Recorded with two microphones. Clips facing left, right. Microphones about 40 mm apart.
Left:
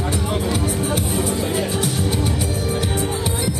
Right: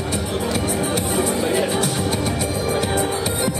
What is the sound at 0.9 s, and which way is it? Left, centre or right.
Music, centre.